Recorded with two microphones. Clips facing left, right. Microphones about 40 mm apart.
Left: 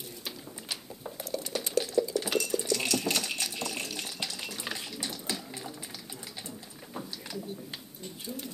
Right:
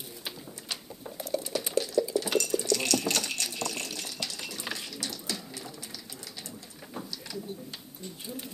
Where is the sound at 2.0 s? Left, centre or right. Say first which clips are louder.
Even; centre.